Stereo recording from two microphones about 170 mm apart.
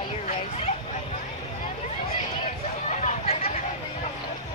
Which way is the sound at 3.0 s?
35° left (ahead or behind).